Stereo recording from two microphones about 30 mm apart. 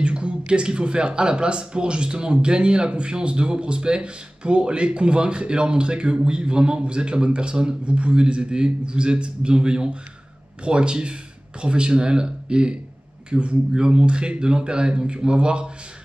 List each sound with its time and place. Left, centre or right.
0.0 s a man's voice: right